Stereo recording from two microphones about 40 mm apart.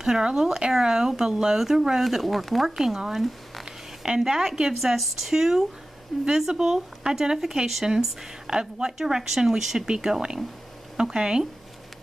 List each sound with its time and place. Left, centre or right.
0.0 s speech: centre